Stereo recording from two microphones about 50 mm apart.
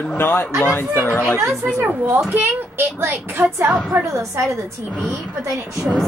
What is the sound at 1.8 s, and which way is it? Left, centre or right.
A child's voice, right.